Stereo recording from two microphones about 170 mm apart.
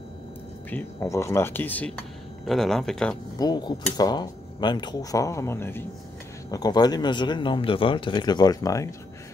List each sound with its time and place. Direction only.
0.7 s speech: 15° left (ahead or behind)
3.3 s speech: 25° left (ahead or behind)